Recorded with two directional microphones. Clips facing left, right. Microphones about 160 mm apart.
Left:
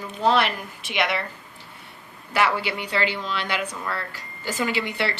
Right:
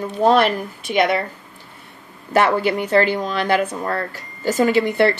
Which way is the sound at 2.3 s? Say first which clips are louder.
Right 7 dB; 45° right (ahead or behind).